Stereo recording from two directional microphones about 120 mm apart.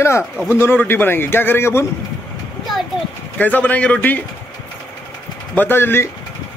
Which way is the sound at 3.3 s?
15° left (ahead or behind).